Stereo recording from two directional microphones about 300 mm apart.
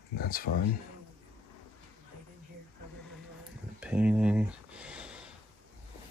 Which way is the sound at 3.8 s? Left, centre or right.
Centre.